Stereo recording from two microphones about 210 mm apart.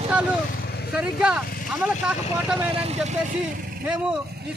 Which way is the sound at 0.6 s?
50° left (ahead or behind).